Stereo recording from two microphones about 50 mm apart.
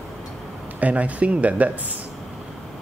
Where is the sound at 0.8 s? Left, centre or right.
Right.